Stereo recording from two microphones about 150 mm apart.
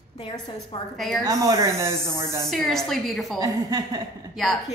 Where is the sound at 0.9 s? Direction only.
Centre (ahead or behind).